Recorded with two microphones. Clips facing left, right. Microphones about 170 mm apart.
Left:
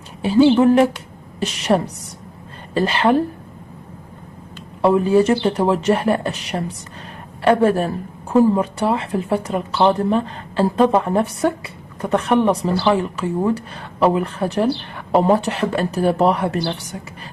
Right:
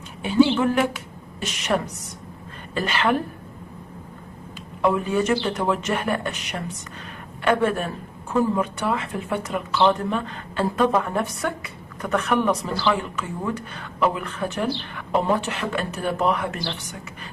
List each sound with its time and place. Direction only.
0.2 s speech: 30° left (ahead or behind)
4.8 s speech: 30° left (ahead or behind)